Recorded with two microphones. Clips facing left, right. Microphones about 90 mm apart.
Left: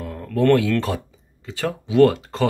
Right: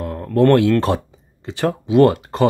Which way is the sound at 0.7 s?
25° right (ahead or behind).